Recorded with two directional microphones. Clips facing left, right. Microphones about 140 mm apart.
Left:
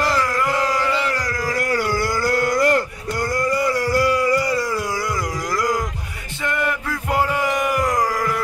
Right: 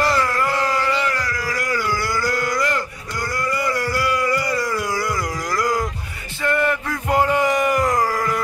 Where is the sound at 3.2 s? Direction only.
45° left (ahead or behind).